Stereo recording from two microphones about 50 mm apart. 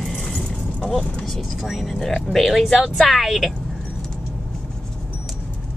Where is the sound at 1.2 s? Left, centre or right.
Centre.